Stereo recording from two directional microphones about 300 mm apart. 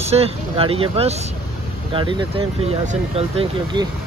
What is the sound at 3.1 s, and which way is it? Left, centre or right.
Speech, centre.